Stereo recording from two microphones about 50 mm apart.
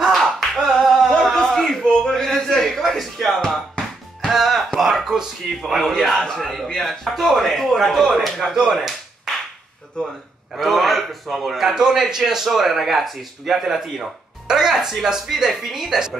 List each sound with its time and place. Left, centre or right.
0.1 s a sound: centre
1.3 s a sound: centre
4.3 s music: centre
4.7 s speech: centre
5.9 s speech: centre
8.7 s tap: centre
10.0 s a man's voice: centre
10.5 s speech: centre